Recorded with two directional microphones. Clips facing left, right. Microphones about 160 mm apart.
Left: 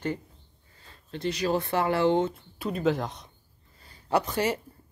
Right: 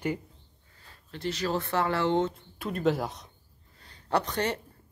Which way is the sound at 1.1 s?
15° left (ahead or behind).